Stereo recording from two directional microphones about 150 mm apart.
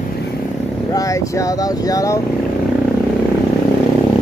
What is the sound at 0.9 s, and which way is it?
Speech, 20° left (ahead or behind).